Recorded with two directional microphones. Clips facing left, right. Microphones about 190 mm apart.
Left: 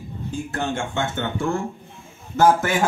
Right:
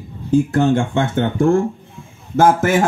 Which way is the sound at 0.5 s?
40° right (ahead or behind).